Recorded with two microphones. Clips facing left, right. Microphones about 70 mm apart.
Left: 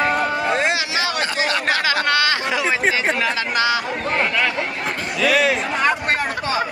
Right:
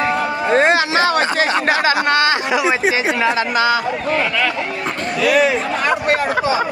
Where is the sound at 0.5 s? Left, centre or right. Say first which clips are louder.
Right 6 dB; right.